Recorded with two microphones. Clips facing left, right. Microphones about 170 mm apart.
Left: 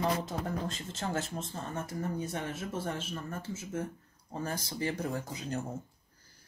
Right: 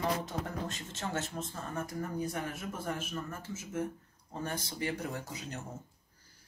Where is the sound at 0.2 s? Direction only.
30° left (ahead or behind).